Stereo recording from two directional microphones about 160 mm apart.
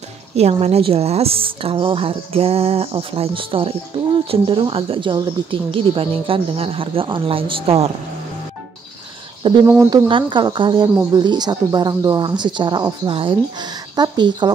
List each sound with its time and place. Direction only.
0.4 s a woman's voice: 40° right (ahead or behind)
9.4 s a woman's voice: 30° right (ahead or behind)